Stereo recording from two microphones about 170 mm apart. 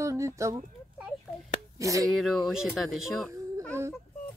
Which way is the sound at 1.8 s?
20° right (ahead or behind).